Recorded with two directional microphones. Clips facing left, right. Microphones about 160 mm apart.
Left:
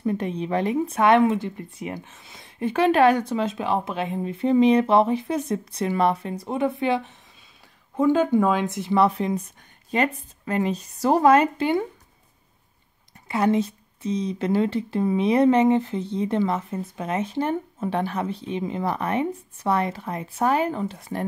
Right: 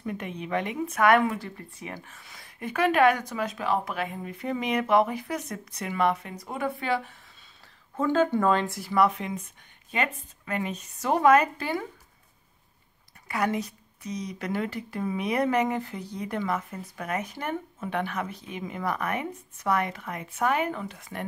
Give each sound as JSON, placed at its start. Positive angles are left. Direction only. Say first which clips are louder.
{"t": 0.0, "sound": "a woman's voice", "louder": "left 8 dB", "side_deg": 30}
{"t": 8.7, "sound": "a woman's voice", "louder": "left 4 dB", "side_deg": 25}
{"t": 13.3, "sound": "a woman's voice", "louder": "left 7 dB", "side_deg": 25}